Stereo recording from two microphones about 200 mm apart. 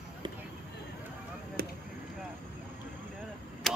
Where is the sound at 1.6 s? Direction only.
50° right (ahead or behind).